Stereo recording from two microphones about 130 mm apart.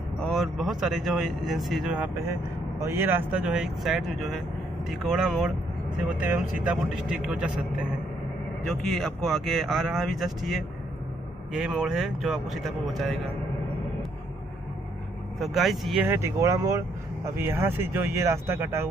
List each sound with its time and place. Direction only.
0.2 s speech: centre (ahead or behind)
2.8 s a man's voice: 15° right (ahead or behind); by 13.2 s centre (ahead or behind)
15.3 s speech: centre (ahead or behind)
16.0 s speech: 20° right (ahead or behind)